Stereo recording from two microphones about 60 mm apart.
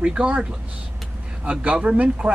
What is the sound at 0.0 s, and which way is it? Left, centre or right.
Speech, centre.